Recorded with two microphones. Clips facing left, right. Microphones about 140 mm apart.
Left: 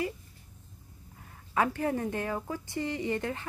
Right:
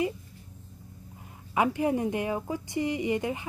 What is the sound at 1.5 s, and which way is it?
Speech, 15° right (ahead or behind).